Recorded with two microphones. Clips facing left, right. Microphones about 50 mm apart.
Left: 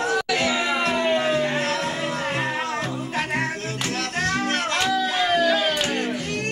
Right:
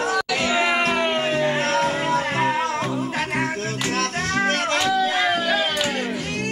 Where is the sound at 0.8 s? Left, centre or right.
Right.